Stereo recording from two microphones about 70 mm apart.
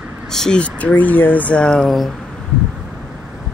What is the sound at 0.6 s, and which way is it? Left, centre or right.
Speech, centre.